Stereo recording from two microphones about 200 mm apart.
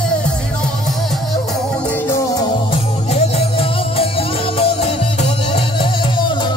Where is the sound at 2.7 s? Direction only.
30° left (ahead or behind).